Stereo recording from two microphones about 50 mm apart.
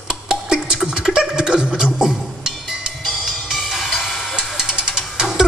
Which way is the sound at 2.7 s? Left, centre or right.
Centre.